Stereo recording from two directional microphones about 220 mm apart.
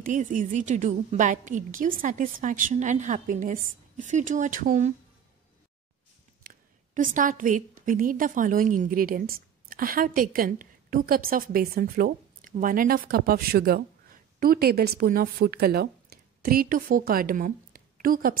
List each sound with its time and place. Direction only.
0.0 s a woman's voice: 35° right (ahead or behind)
6.4 s a woman's voice: 35° right (ahead or behind)